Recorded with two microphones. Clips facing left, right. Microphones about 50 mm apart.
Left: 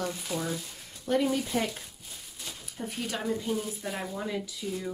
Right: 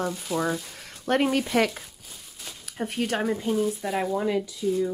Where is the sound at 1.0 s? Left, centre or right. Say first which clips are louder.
Right 4 dB; right.